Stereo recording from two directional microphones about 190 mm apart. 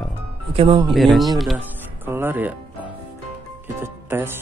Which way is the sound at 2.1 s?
10° right (ahead or behind).